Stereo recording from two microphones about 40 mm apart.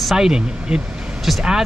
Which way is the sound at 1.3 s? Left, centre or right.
Centre.